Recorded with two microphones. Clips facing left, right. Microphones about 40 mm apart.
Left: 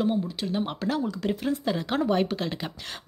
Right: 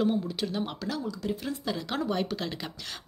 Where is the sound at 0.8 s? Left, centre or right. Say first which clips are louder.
Left 5 dB; left.